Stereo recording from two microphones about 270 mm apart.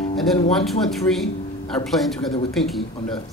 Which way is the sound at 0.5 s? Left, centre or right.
Centre.